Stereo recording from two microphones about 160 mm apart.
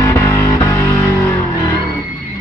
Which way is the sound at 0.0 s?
15° left (ahead or behind).